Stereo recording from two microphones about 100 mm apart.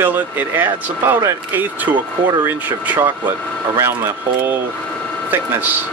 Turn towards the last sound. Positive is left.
turn(degrees=-25)  # may be behind; listen again after turning